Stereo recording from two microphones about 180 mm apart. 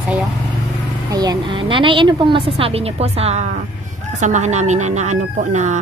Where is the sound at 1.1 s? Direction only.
20° right (ahead or behind).